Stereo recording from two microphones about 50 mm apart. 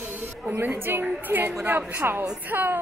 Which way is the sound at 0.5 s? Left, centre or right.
Right.